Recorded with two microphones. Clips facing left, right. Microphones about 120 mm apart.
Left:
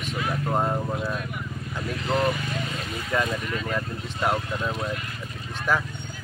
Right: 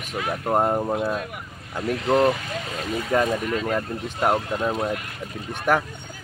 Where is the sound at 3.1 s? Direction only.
40° right (ahead or behind).